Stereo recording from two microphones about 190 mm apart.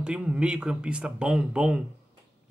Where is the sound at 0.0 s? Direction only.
5° right (ahead or behind).